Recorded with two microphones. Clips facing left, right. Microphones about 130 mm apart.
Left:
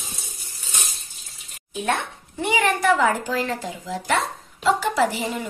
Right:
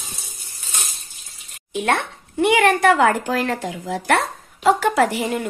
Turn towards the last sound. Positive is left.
turn(degrees=-60)  # may be behind; listen again after turning